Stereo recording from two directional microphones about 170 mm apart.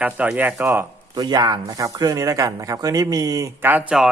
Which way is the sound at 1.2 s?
25° right (ahead or behind).